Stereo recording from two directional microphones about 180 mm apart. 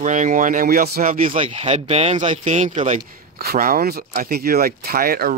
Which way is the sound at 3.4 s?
55° right (ahead or behind).